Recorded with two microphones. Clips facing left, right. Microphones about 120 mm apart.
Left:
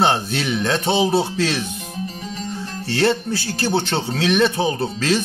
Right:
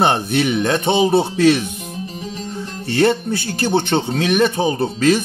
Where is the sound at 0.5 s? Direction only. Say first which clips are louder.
Even; 15° right (ahead or behind).